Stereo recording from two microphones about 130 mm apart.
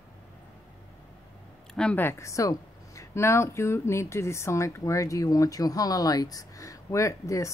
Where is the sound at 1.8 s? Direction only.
10° left (ahead or behind).